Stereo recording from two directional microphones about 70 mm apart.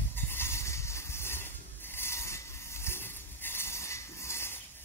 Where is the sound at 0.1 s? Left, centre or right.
Left.